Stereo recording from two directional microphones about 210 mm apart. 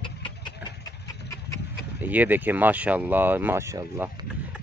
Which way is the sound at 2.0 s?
10° right (ahead or behind).